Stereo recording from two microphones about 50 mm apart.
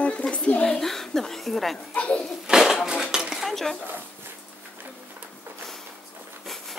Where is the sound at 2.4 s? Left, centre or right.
Centre.